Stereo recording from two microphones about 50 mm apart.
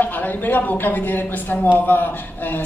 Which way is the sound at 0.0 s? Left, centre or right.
Left.